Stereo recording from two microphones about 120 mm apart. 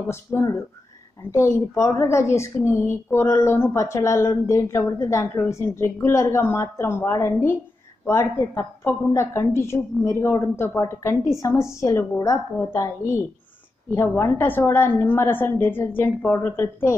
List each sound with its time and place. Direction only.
0.1 s a woman's voice: 20° left (ahead or behind)